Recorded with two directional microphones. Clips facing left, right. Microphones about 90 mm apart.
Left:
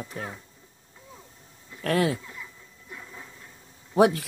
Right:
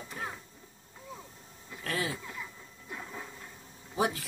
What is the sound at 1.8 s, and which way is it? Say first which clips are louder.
Speech: left 10 dB; 60° left (ahead or behind).